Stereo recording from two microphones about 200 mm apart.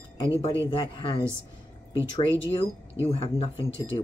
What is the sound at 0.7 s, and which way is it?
Speech, 25° left (ahead or behind).